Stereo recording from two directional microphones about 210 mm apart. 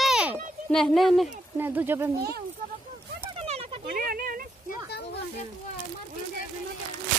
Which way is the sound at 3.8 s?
45° right (ahead or behind).